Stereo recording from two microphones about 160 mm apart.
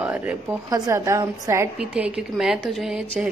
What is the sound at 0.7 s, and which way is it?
A woman's voice, 20° right (ahead or behind).